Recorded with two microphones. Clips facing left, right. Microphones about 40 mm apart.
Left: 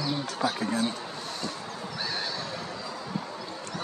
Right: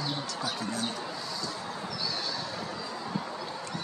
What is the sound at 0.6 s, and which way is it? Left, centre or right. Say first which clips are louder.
Speech: left 5 dB; left.